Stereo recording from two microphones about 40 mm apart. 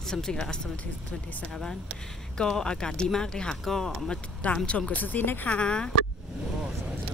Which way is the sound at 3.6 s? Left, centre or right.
Centre.